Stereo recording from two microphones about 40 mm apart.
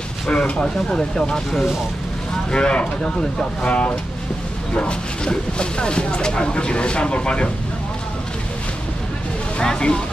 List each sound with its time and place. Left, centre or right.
0.3 s speech: left
4.7 s speech: left
9.6 s speech: left